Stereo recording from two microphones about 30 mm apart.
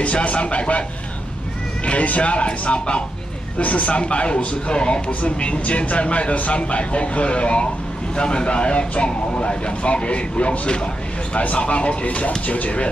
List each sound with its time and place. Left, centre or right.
0.0 s speech: left
2.0 s speech: left
3.5 s speech: left
5.2 s speech: left